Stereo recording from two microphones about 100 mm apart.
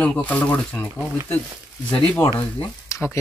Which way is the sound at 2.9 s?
30° left (ahead or behind).